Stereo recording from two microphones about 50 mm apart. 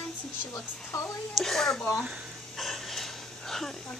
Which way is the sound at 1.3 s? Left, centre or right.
Centre.